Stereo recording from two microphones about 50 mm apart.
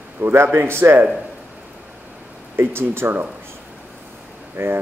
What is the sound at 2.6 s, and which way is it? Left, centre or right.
Speech, right.